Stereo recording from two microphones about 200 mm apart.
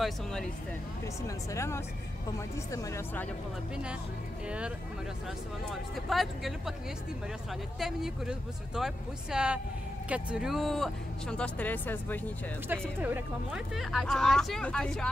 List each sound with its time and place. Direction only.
0.0 s speech: 5° left (ahead or behind)
1.2 s speech: 15° left (ahead or behind)
4.5 s speech: 5° right (ahead or behind)
7.8 s speech: centre (ahead or behind)
13.0 s speech: 5° right (ahead or behind)